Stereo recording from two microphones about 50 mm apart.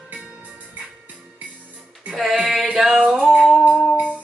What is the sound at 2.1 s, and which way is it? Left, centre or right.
Male singing, centre.